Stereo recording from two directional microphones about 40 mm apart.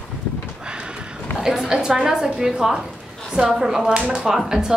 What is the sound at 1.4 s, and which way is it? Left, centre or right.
A woman's voice, centre.